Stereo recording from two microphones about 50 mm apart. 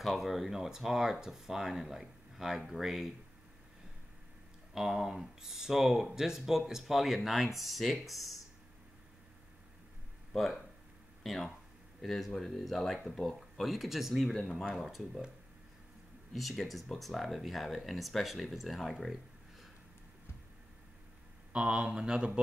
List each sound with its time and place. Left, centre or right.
0.0 s speech: centre
4.7 s speech: centre
10.3 s speech: centre
16.3 s speech: centre
21.5 s speech: centre